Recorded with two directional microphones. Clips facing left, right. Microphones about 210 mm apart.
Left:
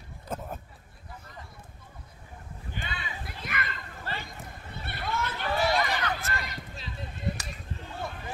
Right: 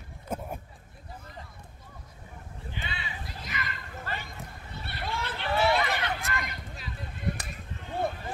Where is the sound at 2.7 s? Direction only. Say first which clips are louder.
Left 1 dB; 50° left (ahead or behind).